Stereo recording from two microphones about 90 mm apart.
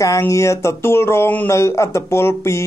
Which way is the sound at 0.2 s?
35° left (ahead or behind).